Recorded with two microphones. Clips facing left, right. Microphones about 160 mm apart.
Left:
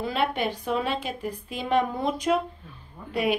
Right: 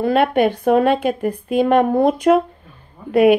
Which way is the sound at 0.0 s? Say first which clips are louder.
Right 11 dB; 55° right (ahead or behind).